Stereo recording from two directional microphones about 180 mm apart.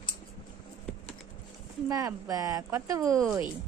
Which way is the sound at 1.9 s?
20° right (ahead or behind).